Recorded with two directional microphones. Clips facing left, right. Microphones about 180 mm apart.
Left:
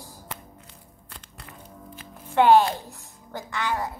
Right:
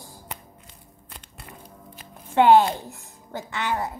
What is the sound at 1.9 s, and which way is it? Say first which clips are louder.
A woman's voice: right 1 dB; 15° right (ahead or behind).